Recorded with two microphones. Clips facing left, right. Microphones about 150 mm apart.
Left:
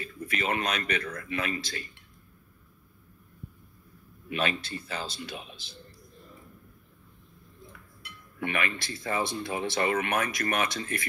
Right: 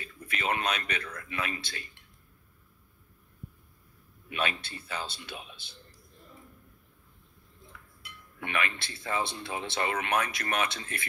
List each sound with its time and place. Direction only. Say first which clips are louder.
0.0 s speech: left 2 dB; 45° left (ahead or behind)
4.3 s speech: left 3 dB; 45° left (ahead or behind)
8.4 s speech: left 2 dB; 45° left (ahead or behind)